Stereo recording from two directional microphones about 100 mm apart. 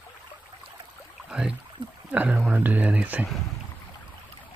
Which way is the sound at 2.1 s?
15° right (ahead or behind).